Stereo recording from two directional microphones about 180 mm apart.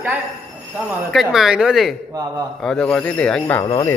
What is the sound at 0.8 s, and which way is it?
Speech, centre (ahead or behind).